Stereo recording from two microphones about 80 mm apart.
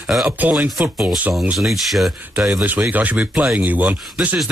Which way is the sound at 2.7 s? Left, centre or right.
Right.